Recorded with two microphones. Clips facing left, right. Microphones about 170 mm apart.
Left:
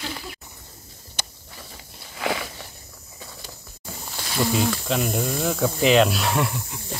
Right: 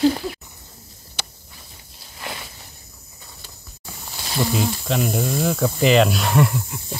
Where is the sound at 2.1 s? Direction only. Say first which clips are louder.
Left 8 dB; 85° left.